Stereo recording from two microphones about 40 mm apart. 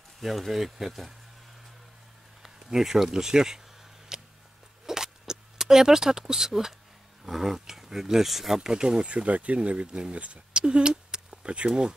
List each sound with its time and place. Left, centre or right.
0.2 s speech: centre
2.4 s a sound: centre
3.1 s speech: centre
4.1 s tick-tock: centre
4.8 s a sound: centre
7.2 s speech: centre
8.6 s speech: centre